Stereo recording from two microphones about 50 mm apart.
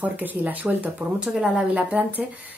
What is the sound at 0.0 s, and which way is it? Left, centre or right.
Speech, right.